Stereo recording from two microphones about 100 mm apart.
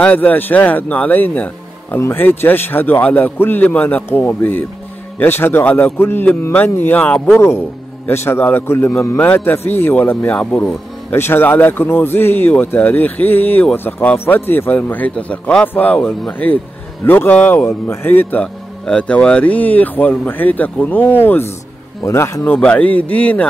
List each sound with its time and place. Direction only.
0.0 s a man's voice: 15° left (ahead or behind)
7.3 s a man's voice: 25° left (ahead or behind)
18.4 s a man's voice: 10° left (ahead or behind)
22.6 s speech: 15° left (ahead or behind)